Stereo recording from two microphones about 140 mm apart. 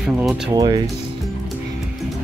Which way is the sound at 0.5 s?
30° right (ahead or behind).